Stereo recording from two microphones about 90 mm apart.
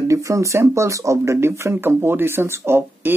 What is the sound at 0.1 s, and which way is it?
Speech, 35° right (ahead or behind).